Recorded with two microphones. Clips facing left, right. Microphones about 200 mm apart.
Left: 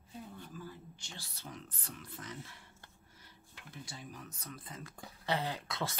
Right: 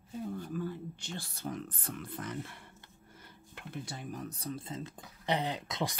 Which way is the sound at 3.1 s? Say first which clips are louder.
Right 10 dB; 55° right (ahead or behind).